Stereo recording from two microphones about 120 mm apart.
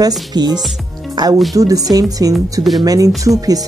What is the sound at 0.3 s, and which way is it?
Speech, 35° right (ahead or behind).